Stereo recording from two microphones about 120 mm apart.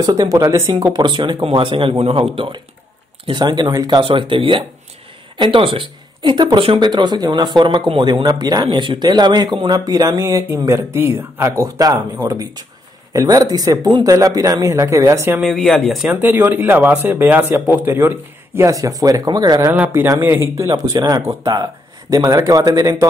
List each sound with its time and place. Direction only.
0.0 s speech: 30° right (ahead or behind)
15.4 s speech: centre (ahead or behind)
16.1 s speech: 15° right (ahead or behind); by 19.7 s 30° right (ahead or behind)
19.8 s speech: 20° right (ahead or behind)